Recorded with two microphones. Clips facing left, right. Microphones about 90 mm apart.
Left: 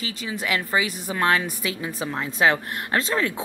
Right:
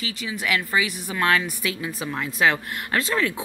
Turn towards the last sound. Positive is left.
turn(degrees=25)  # may be behind; listen again after turning